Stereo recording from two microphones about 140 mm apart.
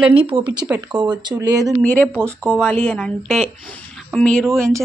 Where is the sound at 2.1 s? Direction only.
15° right (ahead or behind).